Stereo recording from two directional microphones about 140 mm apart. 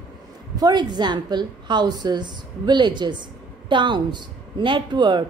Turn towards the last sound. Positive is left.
turn(degrees=-35)  # may be behind; listen again after turning